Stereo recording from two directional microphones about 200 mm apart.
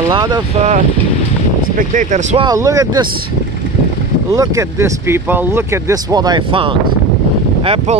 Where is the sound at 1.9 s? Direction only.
40° right (ahead or behind).